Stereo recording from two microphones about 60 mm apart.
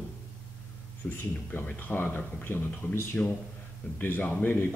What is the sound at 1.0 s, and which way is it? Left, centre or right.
Speech, centre.